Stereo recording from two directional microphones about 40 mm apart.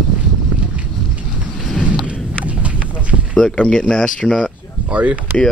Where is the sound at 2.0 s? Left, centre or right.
Right.